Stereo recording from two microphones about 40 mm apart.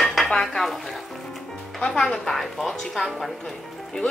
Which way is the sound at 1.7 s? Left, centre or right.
Centre.